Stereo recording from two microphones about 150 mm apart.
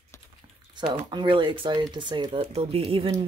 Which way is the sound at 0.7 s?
30° right (ahead or behind).